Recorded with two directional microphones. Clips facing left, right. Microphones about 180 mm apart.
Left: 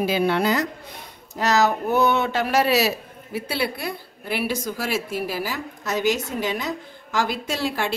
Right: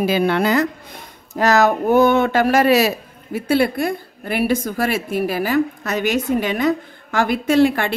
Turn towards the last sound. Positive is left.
turn(degrees=-55)  # may be behind; listen again after turning